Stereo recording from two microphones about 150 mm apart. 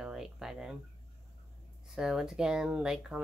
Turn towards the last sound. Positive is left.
turn(degrees=-5)  # may be behind; listen again after turning